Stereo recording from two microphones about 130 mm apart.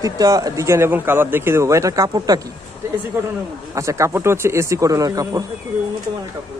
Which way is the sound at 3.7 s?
25° right (ahead or behind).